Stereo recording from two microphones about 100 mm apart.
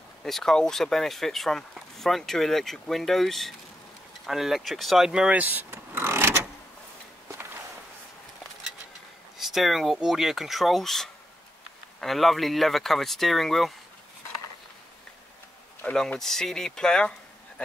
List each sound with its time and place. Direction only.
0.2 s speech: 5° left (ahead or behind); by 6.4 s 25° right (ahead or behind)
7.2 s walk: 25° right (ahead or behind)
9.4 s speech: centre (ahead or behind)
15.8 s speech: 10° left (ahead or behind)